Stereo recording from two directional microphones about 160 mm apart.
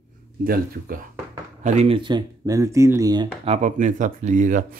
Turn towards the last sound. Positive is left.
turn(degrees=-55)  # may be behind; listen again after turning